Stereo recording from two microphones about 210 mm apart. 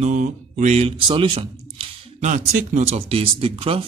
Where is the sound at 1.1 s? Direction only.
25° right (ahead or behind).